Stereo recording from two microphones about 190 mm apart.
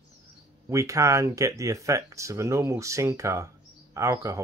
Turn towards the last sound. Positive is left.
turn(degrees=-15)  # may be behind; listen again after turning